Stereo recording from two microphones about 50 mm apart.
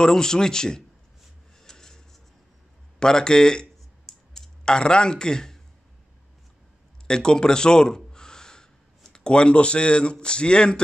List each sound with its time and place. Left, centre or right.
0.0 s speech: centre
1.6 s a sound: centre
3.0 s clicking: centre
7.1 s gasp: centre
10.2 s speech: centre